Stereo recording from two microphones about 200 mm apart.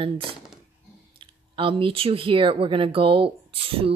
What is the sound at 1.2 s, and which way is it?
Speech, 25° right (ahead or behind).